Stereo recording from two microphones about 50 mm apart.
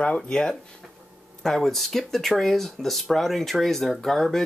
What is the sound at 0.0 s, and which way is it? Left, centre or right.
Speech, centre.